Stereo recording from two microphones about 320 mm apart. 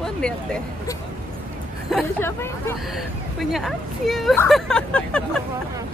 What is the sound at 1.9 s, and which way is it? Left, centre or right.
Speech, centre.